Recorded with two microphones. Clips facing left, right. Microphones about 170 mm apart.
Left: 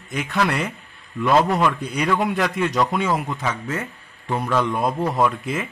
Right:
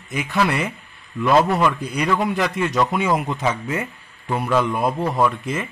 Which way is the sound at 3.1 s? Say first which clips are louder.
Right 3 dB; 20° right (ahead or behind).